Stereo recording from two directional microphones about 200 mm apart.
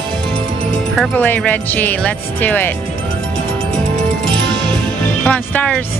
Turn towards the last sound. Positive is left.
turn(degrees=10)  # may be behind; listen again after turning